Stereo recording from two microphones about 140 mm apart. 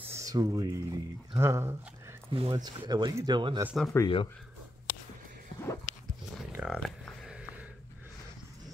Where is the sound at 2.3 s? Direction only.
35° right (ahead or behind).